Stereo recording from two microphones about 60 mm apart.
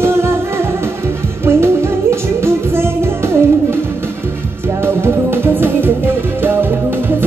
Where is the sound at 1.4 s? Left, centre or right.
Right.